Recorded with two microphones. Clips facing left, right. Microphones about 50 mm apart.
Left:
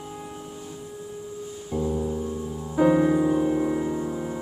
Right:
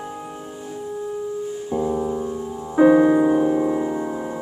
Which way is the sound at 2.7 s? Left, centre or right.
Right.